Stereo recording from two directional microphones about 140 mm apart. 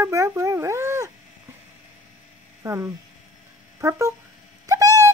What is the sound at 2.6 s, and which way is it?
Speech, 20° right (ahead or behind).